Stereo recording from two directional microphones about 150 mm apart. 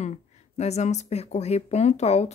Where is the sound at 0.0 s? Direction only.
50° left (ahead or behind).